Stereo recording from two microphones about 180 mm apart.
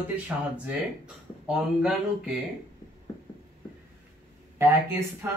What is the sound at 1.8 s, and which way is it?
Speech, 5° right (ahead or behind).